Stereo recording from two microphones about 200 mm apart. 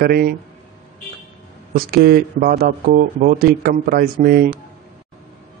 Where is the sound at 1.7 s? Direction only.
50° right (ahead or behind).